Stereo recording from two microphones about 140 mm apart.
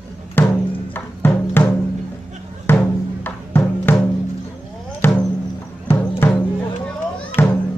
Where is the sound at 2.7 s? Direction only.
15° left (ahead or behind).